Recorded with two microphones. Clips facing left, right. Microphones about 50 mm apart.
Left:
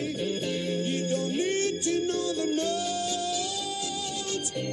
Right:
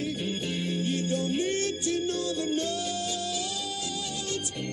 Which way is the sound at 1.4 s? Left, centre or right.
Left.